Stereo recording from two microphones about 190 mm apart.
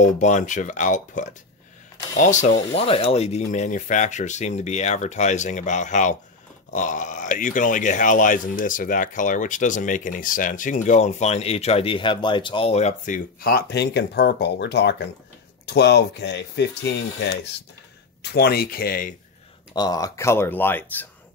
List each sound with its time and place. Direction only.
0.0 s speech: 40° left (ahead or behind); by 17.3 s 65° left (ahead or behind)
18.3 s speech: 55° left (ahead or behind)
19.7 s speech: 20° left (ahead or behind)